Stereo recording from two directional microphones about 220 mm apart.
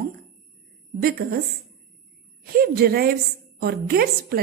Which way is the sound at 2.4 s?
40° right (ahead or behind).